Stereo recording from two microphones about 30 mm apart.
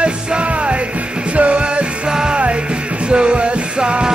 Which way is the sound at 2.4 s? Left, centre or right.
Right.